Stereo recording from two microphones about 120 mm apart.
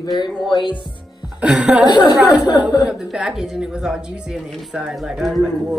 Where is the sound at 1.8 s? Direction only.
35° left (ahead or behind).